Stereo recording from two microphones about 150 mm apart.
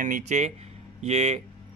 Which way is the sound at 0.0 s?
55° right (ahead or behind).